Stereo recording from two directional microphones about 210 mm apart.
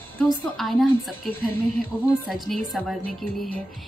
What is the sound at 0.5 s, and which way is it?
Speech, centre (ahead or behind).